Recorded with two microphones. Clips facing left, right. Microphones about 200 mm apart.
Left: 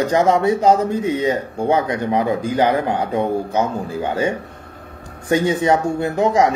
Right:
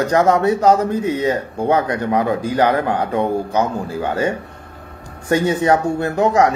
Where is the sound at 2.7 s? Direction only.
25° left (ahead or behind).